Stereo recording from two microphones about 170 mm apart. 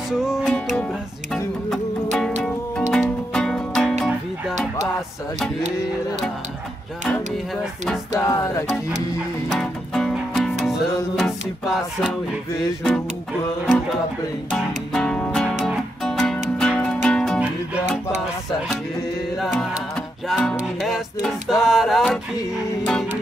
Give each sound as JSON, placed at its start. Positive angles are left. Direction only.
{"t": 0.1, "sound": "music", "side_deg": 0}
{"t": 1.7, "sound": "music", "side_deg": 0}
{"t": 8.2, "sound": "music", "side_deg": 20}
{"t": 9.5, "sound": "music", "side_deg": 0}
{"t": 14.5, "sound": "music", "side_deg": 5}
{"t": 20.2, "sound": "music", "side_deg": 0}